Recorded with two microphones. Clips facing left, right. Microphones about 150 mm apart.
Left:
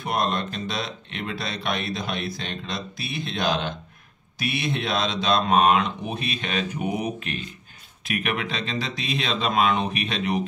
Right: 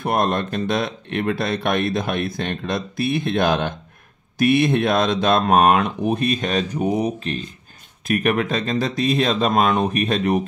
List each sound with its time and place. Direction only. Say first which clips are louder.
0.0 s speech: right 5 dB; 50° right (ahead or behind)